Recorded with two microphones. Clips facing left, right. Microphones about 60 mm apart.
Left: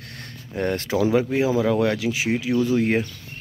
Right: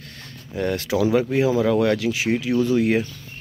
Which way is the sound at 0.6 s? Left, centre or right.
Left.